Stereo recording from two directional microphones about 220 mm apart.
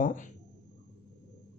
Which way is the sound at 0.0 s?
35° left (ahead or behind).